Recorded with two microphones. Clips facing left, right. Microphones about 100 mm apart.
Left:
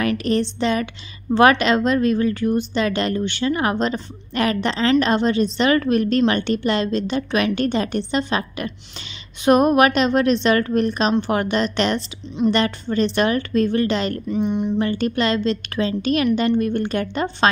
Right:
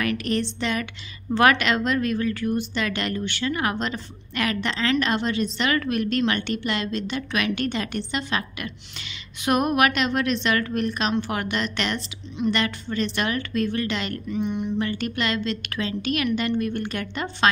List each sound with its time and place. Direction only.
0.0 s a woman's voice: 30° left (ahead or behind)